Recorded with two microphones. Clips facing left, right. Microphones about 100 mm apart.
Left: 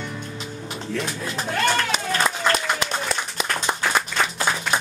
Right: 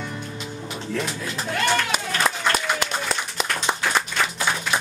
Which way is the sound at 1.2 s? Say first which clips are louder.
Left 1 dB; 35° left (ahead or behind).